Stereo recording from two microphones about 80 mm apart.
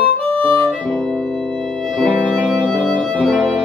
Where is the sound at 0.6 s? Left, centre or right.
Centre.